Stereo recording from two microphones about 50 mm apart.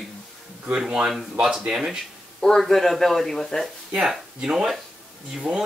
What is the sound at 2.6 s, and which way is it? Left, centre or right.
Speech, centre.